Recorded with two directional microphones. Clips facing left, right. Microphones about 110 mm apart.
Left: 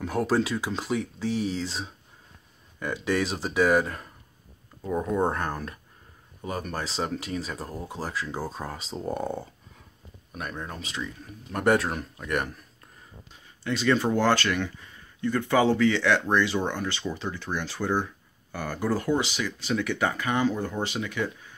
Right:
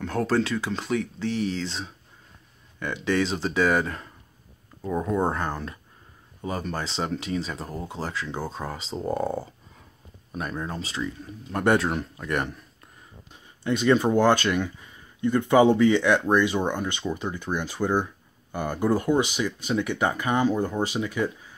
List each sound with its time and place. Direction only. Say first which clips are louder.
0.0 s speech: right 1 dB; 5° left (ahead or behind)
10.4 s speech: right 4 dB; centre (ahead or behind)
13.7 s speech: right 3 dB; 20° right (ahead or behind)